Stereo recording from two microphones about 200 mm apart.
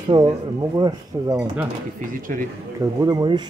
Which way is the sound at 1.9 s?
45° right (ahead or behind).